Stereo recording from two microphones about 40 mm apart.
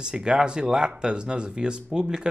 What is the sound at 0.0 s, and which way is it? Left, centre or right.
Speech, right.